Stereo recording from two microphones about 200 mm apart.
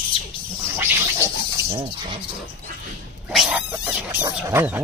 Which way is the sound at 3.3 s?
5° right (ahead or behind).